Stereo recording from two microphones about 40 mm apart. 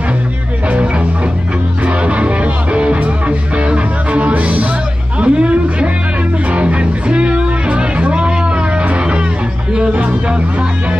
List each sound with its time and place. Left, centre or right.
2.0 s music: right
5.2 s a sound: right
6.5 s music: right